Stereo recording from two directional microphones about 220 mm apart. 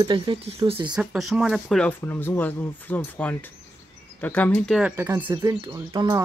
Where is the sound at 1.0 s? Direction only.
Centre (ahead or behind).